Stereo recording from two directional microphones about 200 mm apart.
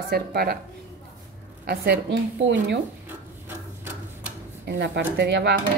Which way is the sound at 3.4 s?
10° right (ahead or behind).